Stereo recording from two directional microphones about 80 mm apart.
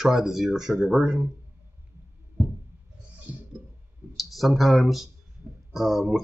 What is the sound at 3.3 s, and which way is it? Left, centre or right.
Clicking, centre.